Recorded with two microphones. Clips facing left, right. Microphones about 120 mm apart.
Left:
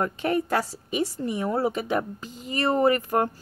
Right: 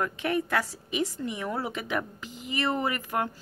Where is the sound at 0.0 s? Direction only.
40° left (ahead or behind).